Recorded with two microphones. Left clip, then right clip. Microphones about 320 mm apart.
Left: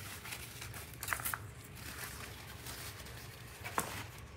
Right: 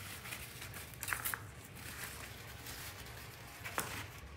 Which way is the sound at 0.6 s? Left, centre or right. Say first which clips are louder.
Even; centre.